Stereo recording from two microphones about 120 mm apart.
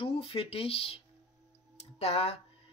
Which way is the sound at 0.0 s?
50° left (ahead or behind).